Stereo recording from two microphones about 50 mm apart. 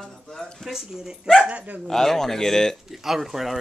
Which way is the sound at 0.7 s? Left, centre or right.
Centre.